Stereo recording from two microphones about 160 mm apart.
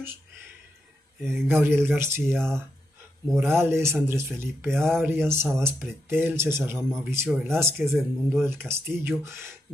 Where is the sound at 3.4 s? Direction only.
15° right (ahead or behind).